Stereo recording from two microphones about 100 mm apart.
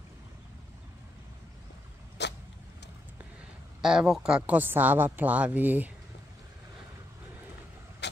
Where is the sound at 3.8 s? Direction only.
5° right (ahead or behind).